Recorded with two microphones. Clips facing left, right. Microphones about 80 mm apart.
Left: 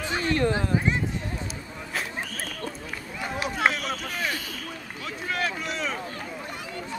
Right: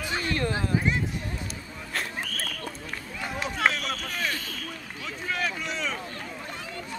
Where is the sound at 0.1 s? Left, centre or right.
Centre.